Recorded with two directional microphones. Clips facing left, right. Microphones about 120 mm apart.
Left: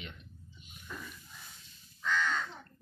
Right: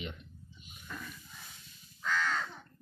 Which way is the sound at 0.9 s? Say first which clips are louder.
Right 1 dB; 5° left (ahead or behind).